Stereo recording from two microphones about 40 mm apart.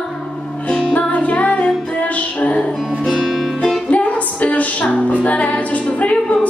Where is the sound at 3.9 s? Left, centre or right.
Left.